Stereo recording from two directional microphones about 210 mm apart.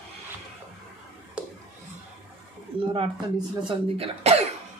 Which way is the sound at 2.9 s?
25° right (ahead or behind).